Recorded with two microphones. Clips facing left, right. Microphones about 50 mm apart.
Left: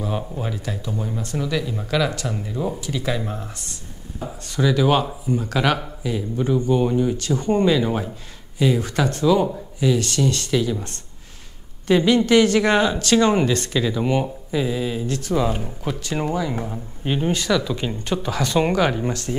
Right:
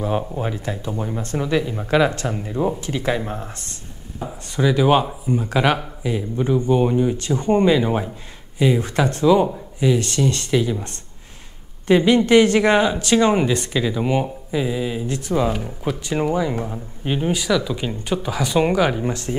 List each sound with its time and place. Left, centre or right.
0.2 s speech: centre
0.6 s speech: right
4.2 s speech: centre
10.5 s speech: centre
11.9 s speech: right
15.0 s speech: right
16.5 s speech: centre